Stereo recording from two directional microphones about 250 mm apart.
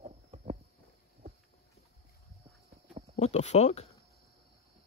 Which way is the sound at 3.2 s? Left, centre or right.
Left.